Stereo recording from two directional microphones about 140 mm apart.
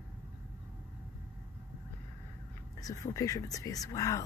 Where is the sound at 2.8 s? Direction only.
25° left (ahead or behind).